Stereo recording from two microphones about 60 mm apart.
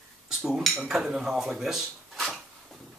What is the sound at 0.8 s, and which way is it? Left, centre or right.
Speech, centre.